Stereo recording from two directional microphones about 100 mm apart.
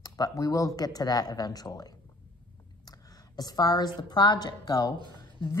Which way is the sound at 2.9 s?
40° left (ahead or behind).